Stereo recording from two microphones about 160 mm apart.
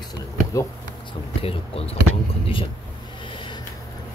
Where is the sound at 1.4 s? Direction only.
35° left (ahead or behind).